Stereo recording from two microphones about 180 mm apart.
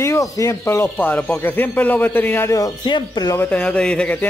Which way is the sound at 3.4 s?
5° left (ahead or behind).